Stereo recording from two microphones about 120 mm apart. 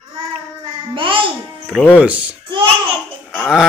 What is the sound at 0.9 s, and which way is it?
Speech, 45° right (ahead or behind).